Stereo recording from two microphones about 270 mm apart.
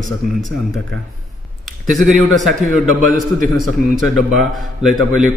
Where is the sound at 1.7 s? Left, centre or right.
Centre.